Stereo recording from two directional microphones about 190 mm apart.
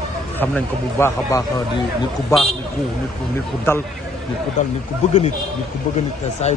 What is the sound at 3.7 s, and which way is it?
Speech, 10° left (ahead or behind).